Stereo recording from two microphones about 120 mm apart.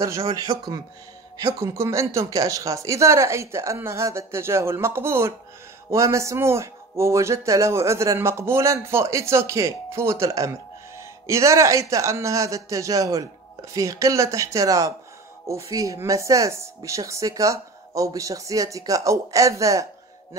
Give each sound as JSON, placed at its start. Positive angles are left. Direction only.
{"t": 0.0, "sound": "speech", "side_deg": -25}